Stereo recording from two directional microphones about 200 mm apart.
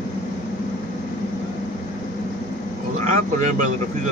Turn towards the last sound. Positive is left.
turn(degrees=-40)  # may be behind; listen again after turning